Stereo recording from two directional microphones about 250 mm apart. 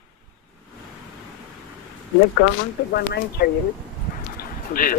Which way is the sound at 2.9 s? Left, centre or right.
Left.